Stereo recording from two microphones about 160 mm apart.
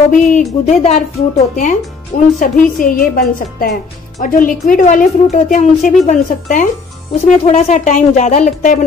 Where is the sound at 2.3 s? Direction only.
55° left (ahead or behind).